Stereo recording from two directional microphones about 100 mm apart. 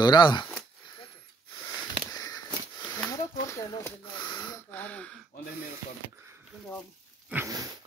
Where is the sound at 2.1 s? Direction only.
35° left (ahead or behind).